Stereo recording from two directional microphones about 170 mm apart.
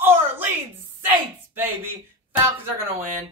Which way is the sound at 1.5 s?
10° right (ahead or behind).